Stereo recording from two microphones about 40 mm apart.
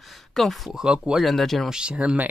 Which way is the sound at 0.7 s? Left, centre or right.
Centre.